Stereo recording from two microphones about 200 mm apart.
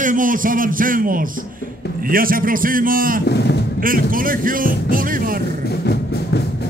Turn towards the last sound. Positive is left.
turn(degrees=55)  # may be behind; listen again after turning